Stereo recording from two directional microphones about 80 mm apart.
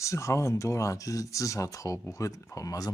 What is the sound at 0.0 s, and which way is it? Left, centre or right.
Speech, left.